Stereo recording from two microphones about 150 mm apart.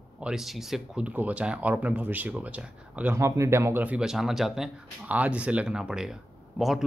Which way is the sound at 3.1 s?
20° right (ahead or behind).